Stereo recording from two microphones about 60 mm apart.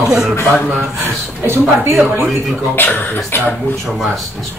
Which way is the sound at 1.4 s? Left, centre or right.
Right.